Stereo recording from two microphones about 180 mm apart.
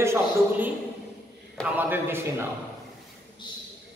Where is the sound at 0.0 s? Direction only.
10° right (ahead or behind).